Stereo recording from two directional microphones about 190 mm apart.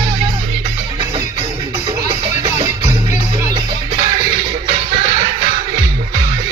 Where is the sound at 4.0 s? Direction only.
25° right (ahead or behind).